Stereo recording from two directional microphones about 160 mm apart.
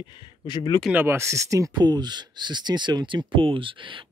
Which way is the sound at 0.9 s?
15° right (ahead or behind).